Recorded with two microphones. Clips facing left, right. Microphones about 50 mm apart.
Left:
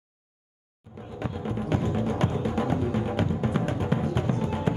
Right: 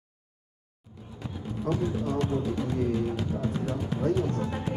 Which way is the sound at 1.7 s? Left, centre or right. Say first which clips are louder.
Even; left.